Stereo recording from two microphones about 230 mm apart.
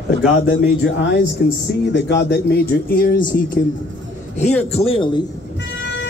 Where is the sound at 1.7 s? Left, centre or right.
Left.